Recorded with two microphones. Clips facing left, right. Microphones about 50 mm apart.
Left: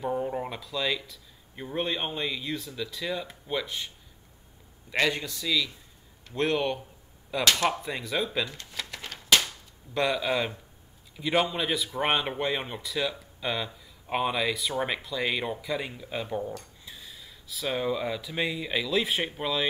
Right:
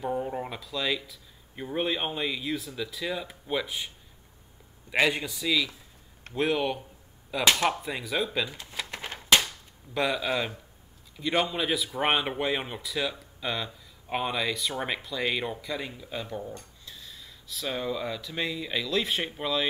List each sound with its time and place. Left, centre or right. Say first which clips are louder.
0.0 s speech: left 1 dB; centre
4.9 s a man's voice: right 2 dB; centre
8.9 s a sound: right 1 dB; right
9.9 s speech: left 1 dB; centre